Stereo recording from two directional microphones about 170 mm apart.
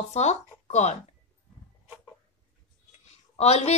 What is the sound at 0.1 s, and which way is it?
Speech, 40° left (ahead or behind).